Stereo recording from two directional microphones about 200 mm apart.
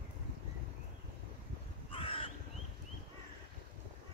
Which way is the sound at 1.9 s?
25° left (ahead or behind).